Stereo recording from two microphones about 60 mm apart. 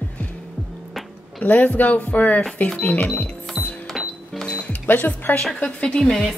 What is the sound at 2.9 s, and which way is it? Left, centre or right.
Speech, left.